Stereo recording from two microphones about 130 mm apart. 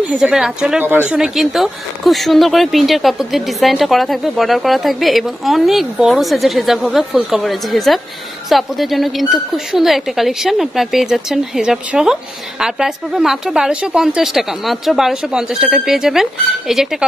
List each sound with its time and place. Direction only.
0.1 s speech: 5° right (ahead or behind)